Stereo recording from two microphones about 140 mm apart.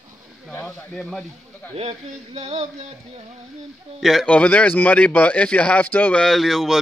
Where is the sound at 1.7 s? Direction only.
50° right (ahead or behind).